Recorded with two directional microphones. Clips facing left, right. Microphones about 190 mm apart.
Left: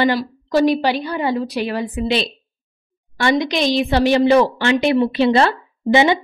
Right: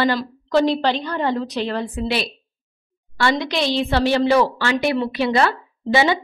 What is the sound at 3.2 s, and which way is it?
A woman's voice, 15° left (ahead or behind).